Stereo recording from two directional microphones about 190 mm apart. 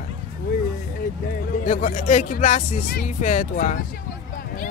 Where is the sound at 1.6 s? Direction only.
40° left (ahead or behind).